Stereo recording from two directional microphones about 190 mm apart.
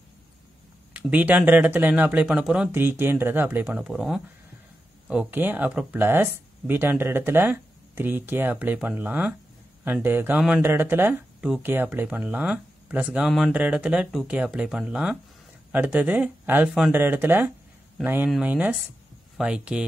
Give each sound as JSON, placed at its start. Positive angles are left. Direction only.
{"t": 0.9, "sound": "speech", "side_deg": -10}